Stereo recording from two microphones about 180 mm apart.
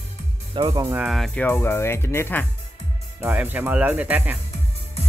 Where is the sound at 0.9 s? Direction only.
Centre (ahead or behind).